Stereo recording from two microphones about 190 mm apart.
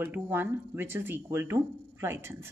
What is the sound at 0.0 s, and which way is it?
Speech, 10° right (ahead or behind).